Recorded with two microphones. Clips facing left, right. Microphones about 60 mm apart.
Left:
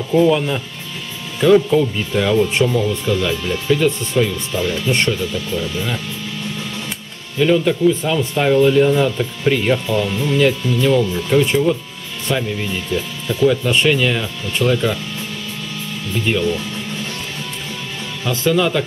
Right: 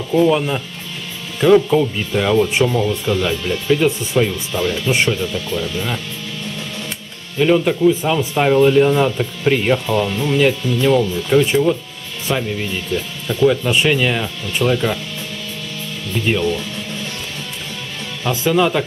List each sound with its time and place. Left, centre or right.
0.1 s speech: centre
3.3 s speech: centre
7.5 s speech: centre
16.3 s speech: centre
18.2 s speech: centre